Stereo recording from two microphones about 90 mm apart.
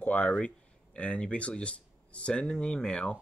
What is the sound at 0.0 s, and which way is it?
Speech, 15° left (ahead or behind).